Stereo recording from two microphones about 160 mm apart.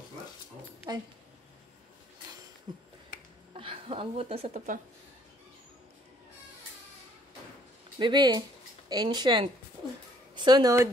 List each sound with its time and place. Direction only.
2.7 s finger snapping: 30° right (ahead or behind)
3.5 s a sound: 35° right (ahead or behind)
8.0 s speech: 25° right (ahead or behind)